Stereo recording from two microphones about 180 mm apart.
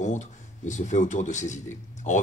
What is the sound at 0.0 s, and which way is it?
A man's voice, 40° left (ahead or behind).